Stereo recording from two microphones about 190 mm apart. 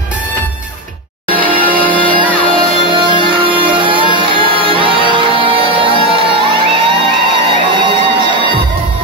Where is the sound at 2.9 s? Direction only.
25° right (ahead or behind).